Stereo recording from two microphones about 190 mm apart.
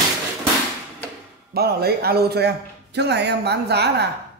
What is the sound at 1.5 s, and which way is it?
A man's voice, 55° right (ahead or behind).